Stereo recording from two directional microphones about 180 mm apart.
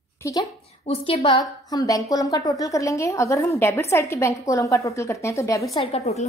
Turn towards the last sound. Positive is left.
turn(degrees=35)  # may be behind; listen again after turning